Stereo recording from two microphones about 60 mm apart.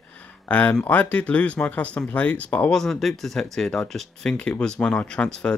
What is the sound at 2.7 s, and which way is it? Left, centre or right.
Speech, centre.